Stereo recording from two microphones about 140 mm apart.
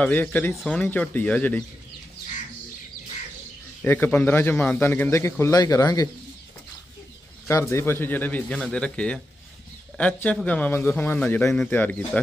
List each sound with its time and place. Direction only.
0.0 s a man's voice: 10° left (ahead or behind)
3.8 s a man's voice: 15° left (ahead or behind)
7.7 s a man's voice: 15° left (ahead or behind)